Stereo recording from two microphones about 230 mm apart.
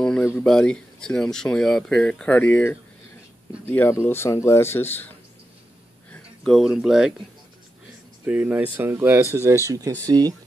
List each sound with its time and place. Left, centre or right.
0.0 s speech: centre
8.3 s speech: centre